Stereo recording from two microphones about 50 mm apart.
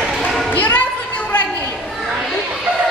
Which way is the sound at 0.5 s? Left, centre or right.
Left.